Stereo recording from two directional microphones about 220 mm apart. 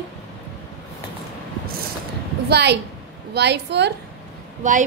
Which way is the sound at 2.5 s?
50° right (ahead or behind).